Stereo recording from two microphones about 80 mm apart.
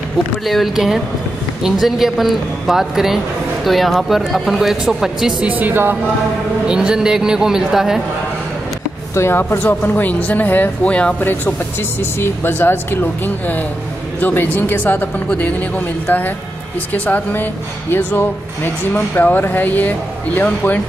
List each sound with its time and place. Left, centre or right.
0.5 s speech: centre
5.5 s a woman's voice: right
6.7 s speech: centre
9.1 s speech: left; by 11.2 s centre
12.0 s speech: left